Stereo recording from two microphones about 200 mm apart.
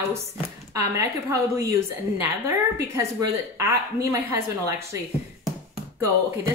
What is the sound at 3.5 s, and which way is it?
A woman's voice, 15° right (ahead or behind).